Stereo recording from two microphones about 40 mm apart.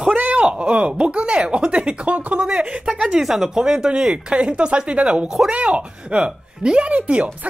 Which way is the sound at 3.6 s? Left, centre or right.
Centre.